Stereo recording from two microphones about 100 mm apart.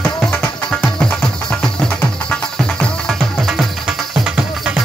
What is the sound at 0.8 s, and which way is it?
Music, 10° left (ahead or behind).